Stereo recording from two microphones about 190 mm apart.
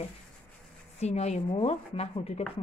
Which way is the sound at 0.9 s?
35° left (ahead or behind).